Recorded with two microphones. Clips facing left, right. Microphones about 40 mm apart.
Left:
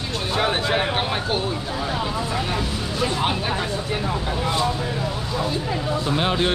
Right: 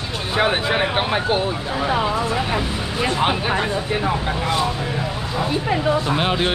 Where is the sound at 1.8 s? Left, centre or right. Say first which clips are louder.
Right 7 dB; right.